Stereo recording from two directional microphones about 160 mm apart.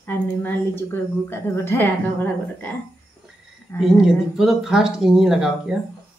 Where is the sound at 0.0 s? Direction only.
15° left (ahead or behind).